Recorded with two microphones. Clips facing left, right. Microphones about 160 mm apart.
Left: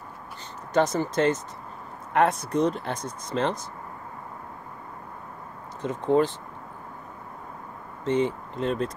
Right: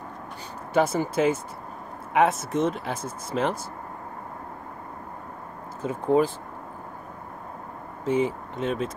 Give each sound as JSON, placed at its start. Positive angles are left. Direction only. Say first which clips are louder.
{"t": 0.7, "sound": "speech", "louder": "even", "side_deg": -10}
{"t": 5.8, "sound": "speech", "louder": "even", "side_deg": -10}
{"t": 8.0, "sound": "speech", "louder": "even", "side_deg": -5}